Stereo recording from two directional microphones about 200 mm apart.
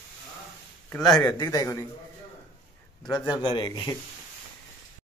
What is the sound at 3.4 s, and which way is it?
Speech, 25° left (ahead or behind).